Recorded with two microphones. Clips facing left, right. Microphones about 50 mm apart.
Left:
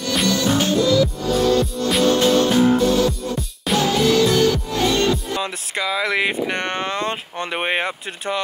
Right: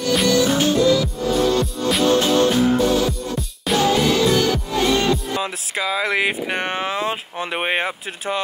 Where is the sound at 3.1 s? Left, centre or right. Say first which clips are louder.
Even; centre.